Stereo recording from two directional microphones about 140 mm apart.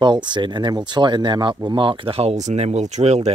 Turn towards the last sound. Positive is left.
turn(degrees=-55)  # may be behind; listen again after turning